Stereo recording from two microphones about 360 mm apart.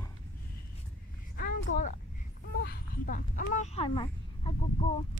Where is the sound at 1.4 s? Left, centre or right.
Left.